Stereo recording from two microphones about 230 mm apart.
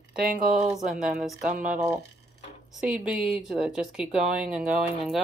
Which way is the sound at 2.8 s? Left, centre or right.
Centre.